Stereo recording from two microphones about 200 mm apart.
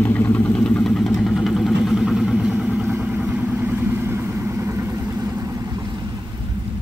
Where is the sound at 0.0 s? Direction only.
10° left (ahead or behind).